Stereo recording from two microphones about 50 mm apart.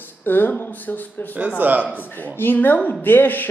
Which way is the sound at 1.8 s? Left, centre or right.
Left.